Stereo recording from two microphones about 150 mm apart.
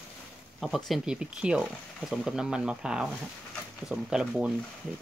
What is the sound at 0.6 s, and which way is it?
Speech, centre (ahead or behind).